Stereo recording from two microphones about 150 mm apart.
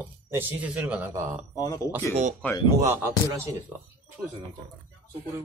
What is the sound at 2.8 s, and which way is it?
Speech, 20° right (ahead or behind).